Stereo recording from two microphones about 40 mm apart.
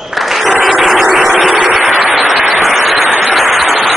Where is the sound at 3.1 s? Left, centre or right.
Right.